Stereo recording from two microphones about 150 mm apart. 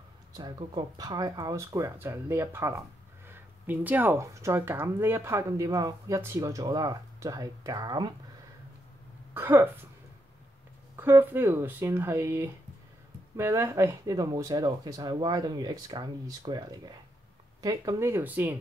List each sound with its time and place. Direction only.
0.3 s speech: 25° right (ahead or behind)
9.3 s speech: 15° right (ahead or behind)
11.0 s speech: 15° right (ahead or behind)